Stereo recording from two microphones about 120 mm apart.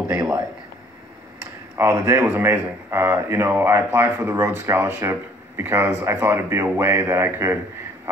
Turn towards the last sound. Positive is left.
turn(degrees=-20)  # may be behind; listen again after turning